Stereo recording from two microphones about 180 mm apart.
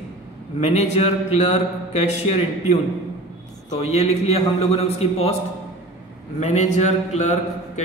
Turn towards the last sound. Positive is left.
turn(degrees=40)  # may be behind; listen again after turning